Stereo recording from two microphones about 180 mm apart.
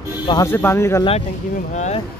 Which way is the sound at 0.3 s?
15° left (ahead or behind).